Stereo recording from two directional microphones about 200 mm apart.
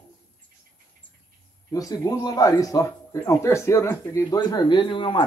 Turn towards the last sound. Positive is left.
turn(degrees=25)  # may be behind; listen again after turning